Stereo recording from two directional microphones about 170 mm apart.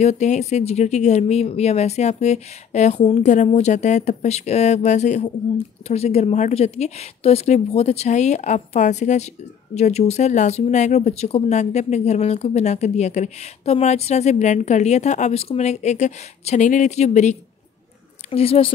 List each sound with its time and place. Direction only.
0.0 s speech: 40° left (ahead or behind)